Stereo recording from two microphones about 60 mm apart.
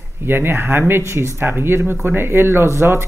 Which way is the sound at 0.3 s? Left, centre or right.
Right.